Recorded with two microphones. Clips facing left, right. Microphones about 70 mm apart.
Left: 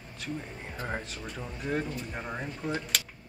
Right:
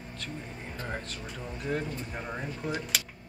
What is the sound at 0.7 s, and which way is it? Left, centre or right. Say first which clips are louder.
Speech: left 2 dB; centre.